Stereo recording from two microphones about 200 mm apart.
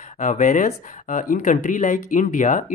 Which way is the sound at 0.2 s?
35° left (ahead or behind).